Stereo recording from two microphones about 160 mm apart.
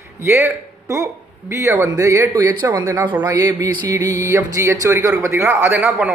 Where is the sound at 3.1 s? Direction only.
30° right (ahead or behind).